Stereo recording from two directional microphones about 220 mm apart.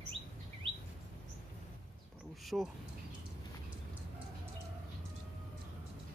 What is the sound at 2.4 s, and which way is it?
Speech, centre (ahead or behind).